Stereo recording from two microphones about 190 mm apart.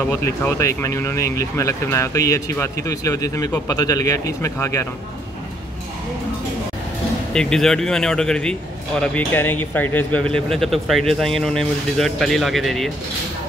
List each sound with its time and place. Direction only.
0.0 s speech: 10° left (ahead or behind)
7.3 s speech: 5° left (ahead or behind)